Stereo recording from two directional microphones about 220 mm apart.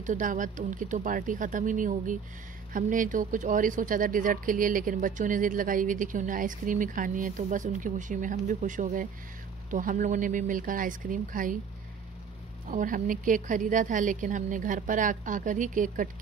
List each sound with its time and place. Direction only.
0.0 s speech: 35° right (ahead or behind)
12.6 s speech: 35° right (ahead or behind)